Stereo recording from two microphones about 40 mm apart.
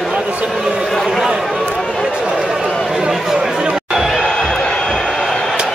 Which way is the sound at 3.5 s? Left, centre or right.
Right.